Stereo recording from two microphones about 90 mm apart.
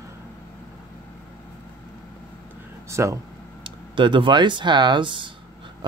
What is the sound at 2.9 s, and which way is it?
Speech, 35° right (ahead or behind).